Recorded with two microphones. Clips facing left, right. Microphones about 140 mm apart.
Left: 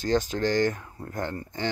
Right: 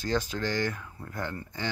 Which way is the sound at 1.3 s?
30° left (ahead or behind).